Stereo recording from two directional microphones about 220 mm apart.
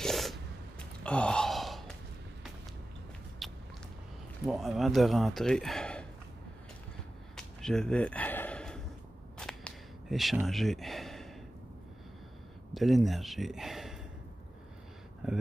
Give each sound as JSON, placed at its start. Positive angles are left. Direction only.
{"t": 0.0, "sound": "gasp", "side_deg": 0}
{"t": 3.4, "sound": "a sound", "side_deg": 0}
{"t": 4.5, "sound": "speech", "side_deg": 0}
{"t": 7.3, "sound": "a sound", "side_deg": 5}
{"t": 12.7, "sound": "a man's voice", "side_deg": 0}
{"t": 15.2, "sound": "speech", "side_deg": 0}